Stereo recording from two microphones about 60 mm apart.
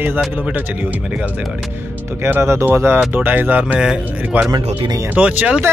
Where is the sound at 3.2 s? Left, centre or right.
Right.